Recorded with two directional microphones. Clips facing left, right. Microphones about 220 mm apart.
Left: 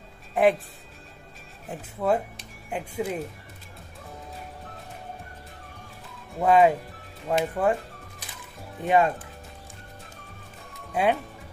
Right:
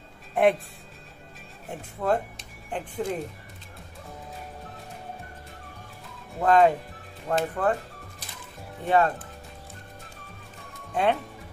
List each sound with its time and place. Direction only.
0.3 s speech: centre (ahead or behind)
1.7 s speech: 5° left (ahead or behind)
6.4 s speech: 10° left (ahead or behind)
8.8 s speech: 15° left (ahead or behind)
10.9 s speech: 5° left (ahead or behind)